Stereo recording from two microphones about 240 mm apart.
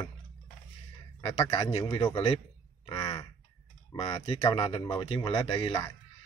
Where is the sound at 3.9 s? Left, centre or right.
Centre.